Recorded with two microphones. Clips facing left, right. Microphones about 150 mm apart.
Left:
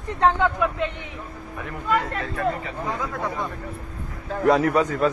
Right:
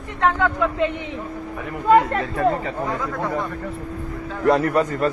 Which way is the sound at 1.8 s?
40° right (ahead or behind).